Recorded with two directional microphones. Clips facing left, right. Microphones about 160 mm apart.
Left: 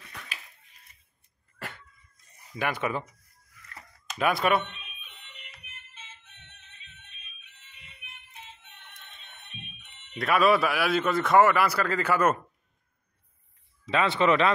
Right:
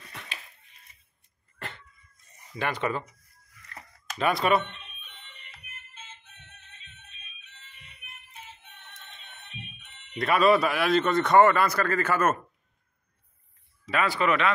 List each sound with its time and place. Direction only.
1.6 s a sound: 10° left (ahead or behind)
2.6 s speech: 10° left (ahead or behind)
4.2 s computer keyboard: centre (ahead or behind)
10.1 s a man's voice: centre (ahead or behind)
13.8 s speech: 25° left (ahead or behind)